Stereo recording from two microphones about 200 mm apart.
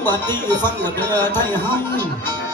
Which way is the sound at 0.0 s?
10° left (ahead or behind).